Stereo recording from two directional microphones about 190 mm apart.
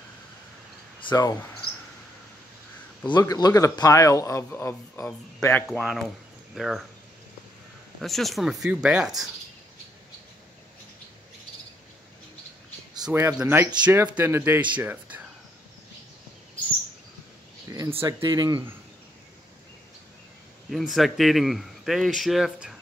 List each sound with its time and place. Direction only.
1.0 s speech: 20° left (ahead or behind)
3.1 s a man's voice: 20° left (ahead or behind)
5.7 s a man's voice: centre (ahead or behind)
8.0 s a man's voice: centre (ahead or behind)
13.0 s speech: 10° right (ahead or behind)
17.6 s speech: 15° right (ahead or behind)
20.7 s a man's voice: centre (ahead or behind)